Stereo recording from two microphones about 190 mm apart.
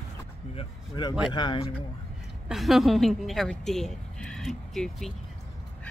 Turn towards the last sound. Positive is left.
turn(degrees=0)  # may be behind; listen again after turning